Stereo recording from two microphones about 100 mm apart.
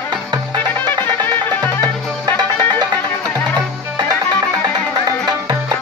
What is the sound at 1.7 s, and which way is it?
Music, 45° right (ahead or behind).